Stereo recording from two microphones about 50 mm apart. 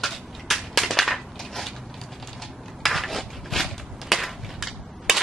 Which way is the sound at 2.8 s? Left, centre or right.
Centre.